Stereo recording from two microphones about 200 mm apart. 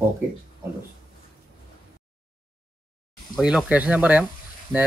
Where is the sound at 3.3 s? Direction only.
Centre (ahead or behind).